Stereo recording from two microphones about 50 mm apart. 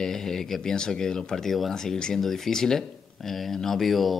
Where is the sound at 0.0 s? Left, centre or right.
Centre.